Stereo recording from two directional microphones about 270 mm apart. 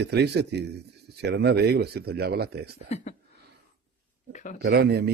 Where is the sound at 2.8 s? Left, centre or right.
Left.